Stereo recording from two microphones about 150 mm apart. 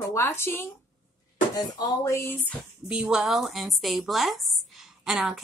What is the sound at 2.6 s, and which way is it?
A woman's voice, 5° right (ahead or behind).